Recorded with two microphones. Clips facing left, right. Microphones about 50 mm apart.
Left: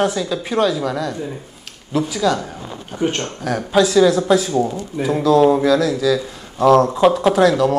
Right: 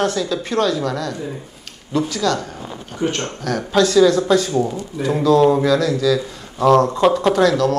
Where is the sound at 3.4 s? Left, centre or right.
Centre.